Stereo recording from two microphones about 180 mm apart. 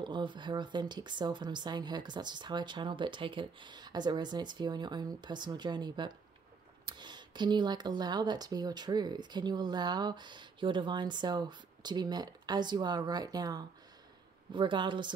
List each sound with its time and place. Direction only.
0.0 s speech: 25° right (ahead or behind)